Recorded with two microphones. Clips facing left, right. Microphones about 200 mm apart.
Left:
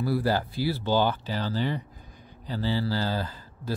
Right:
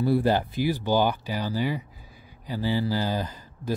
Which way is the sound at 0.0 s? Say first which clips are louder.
Right 3 dB; 20° right (ahead or behind).